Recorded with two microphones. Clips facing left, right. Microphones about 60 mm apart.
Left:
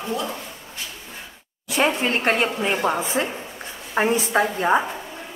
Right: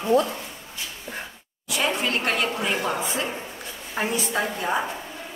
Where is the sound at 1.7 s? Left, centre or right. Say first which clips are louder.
Left 4 dB; left.